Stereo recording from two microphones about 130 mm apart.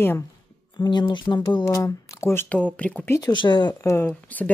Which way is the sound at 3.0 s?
30° left (ahead or behind).